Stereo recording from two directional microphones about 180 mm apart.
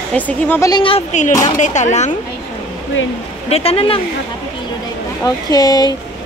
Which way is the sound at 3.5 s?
35° left (ahead or behind).